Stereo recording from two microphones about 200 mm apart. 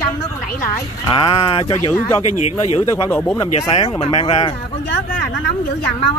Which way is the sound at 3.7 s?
25° left (ahead or behind).